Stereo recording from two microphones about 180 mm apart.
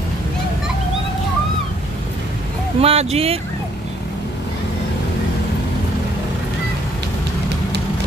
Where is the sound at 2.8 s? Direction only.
35° right (ahead or behind).